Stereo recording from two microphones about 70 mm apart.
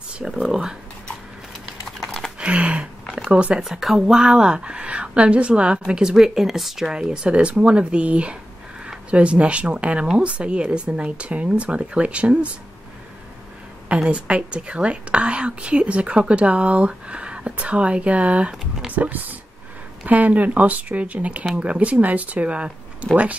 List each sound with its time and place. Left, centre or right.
0.5 s a woman's voice: centre
2.4 s a sound: centre
3.3 s a woman's voice: centre
3.6 s a woman's voice: centre
13.8 s a woman's voice: centre